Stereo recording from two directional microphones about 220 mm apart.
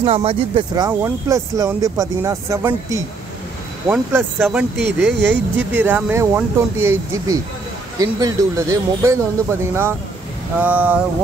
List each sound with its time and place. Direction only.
0.0 s speech: 25° right (ahead or behind); by 4.6 s 10° right (ahead or behind)
4.7 s speech: 50° right (ahead or behind)
5.6 s speech: 10° right (ahead or behind)